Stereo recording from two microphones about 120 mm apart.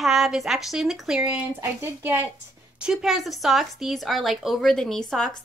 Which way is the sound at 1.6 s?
20° right (ahead or behind).